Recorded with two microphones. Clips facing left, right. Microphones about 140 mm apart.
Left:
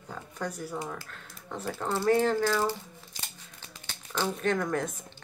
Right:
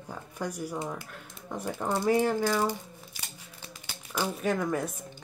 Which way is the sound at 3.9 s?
10° right (ahead or behind).